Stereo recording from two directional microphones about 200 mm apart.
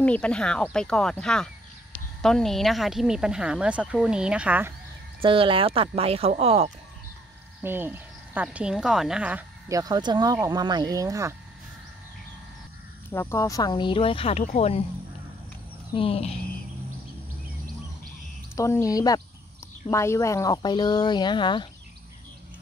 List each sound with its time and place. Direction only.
0.0 s speech: 5° left (ahead or behind)
5.2 s speech: 25° right (ahead or behind)
7.6 s speech: 10° right (ahead or behind)
13.1 s speech: 15° left (ahead or behind); by 14.9 s 30° left (ahead or behind)
15.9 s speech: 30° left (ahead or behind)
18.6 s speech: 15° left (ahead or behind)